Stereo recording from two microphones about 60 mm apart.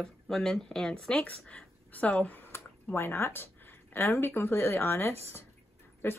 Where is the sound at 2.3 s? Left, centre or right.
Left.